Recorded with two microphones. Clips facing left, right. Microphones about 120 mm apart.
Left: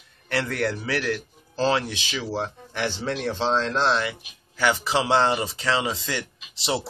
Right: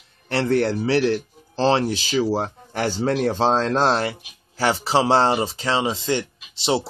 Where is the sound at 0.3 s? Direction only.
30° right (ahead or behind).